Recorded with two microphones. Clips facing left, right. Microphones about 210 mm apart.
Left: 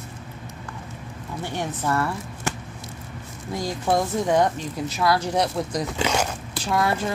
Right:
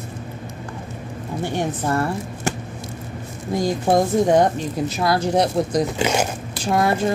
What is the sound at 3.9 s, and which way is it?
Speech, 45° right (ahead or behind).